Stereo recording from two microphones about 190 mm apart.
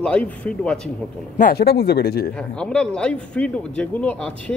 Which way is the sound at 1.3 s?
50° left (ahead or behind).